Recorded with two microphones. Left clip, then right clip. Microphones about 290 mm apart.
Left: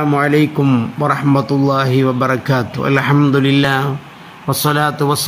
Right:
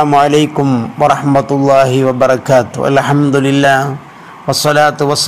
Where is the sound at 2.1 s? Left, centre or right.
Right.